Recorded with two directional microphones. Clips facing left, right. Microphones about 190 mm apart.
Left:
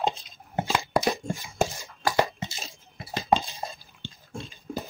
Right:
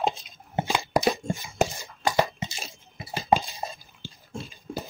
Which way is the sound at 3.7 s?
Centre (ahead or behind).